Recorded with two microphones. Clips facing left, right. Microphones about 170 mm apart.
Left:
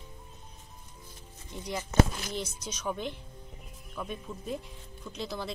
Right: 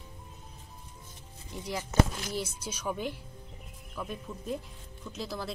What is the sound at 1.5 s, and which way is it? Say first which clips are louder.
Speech: even; 5° right (ahead or behind).